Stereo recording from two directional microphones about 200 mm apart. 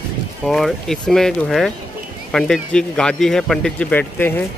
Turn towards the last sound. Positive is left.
turn(degrees=10)  # may be behind; listen again after turning